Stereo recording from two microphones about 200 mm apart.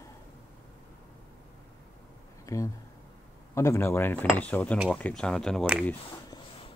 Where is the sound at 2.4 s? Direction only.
15° left (ahead or behind).